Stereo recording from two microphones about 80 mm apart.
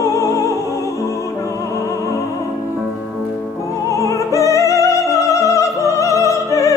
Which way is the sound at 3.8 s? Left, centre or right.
Left.